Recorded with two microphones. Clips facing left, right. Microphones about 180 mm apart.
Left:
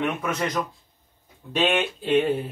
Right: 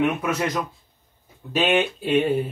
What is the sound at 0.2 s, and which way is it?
Speech, 5° right (ahead or behind).